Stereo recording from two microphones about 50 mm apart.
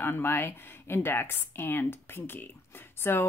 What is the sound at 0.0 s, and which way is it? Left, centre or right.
Speech, left.